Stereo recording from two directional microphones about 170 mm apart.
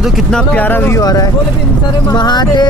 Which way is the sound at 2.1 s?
25° left (ahead or behind).